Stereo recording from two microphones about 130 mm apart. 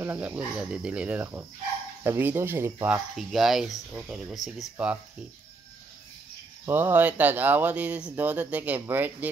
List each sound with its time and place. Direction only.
0.0 s speech: 15° right (ahead or behind)
3.2 s speech: centre (ahead or behind)
6.6 s speech: 15° right (ahead or behind)